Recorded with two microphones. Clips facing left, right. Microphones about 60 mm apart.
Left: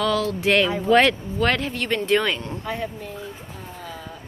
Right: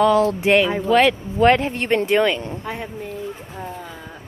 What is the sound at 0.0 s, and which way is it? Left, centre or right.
Speech, right.